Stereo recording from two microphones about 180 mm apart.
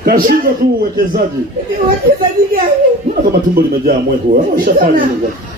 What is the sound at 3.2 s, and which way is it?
A man's voice, 55° right (ahead or behind).